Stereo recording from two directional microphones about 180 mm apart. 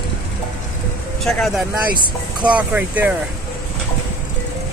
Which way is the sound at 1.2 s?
Centre (ahead or behind).